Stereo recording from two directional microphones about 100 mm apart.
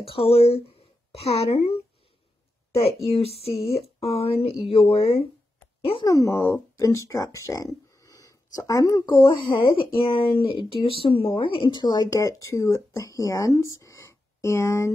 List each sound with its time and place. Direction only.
0.0 s speech: 70° left (ahead or behind); by 1.8 s 90° left
2.7 s speech: 75° left (ahead or behind)
6.0 s speech: 30° left (ahead or behind)
9.0 s speech: 55° left (ahead or behind); by 14.9 s 25° left (ahead or behind)